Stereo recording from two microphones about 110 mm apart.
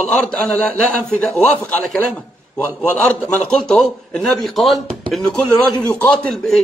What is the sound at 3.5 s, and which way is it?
A man's voice, 5° left (ahead or behind).